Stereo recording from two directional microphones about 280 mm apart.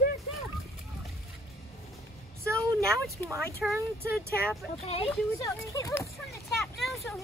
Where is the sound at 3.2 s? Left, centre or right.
Centre.